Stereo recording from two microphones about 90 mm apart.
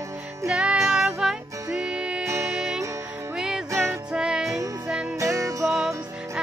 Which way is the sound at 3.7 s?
30° right (ahead or behind).